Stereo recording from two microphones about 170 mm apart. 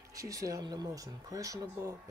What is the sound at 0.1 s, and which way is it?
Speech, 20° right (ahead or behind).